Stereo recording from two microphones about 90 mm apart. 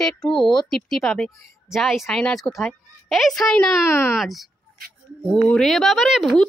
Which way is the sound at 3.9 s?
30° left (ahead or behind).